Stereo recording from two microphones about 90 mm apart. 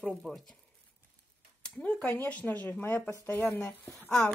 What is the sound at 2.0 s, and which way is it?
Speech, 30° left (ahead or behind).